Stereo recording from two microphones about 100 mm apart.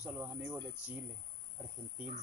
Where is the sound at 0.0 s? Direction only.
15° right (ahead or behind).